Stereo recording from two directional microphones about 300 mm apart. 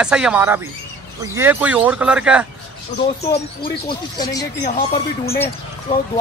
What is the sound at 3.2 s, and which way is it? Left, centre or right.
Speech, centre.